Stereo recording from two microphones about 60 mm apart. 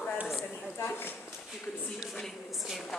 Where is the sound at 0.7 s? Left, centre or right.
Left.